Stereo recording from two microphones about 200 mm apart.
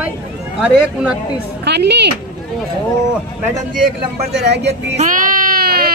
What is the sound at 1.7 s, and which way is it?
Speech, 60° right (ahead or behind).